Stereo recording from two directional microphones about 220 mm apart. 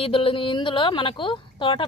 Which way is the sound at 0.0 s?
25° left (ahead or behind).